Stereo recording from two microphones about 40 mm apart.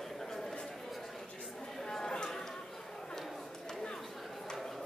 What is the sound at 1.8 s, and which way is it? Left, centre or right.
Chatter, centre.